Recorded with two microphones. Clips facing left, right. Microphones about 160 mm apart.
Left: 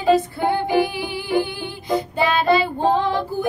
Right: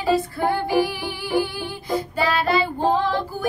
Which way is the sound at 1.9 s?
20° left (ahead or behind).